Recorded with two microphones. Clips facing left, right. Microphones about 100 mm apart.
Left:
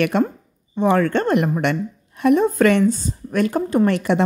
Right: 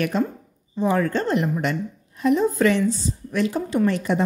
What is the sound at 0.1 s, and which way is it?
A woman's voice, 65° left (ahead or behind).